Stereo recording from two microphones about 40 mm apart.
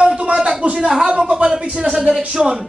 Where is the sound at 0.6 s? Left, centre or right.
Right.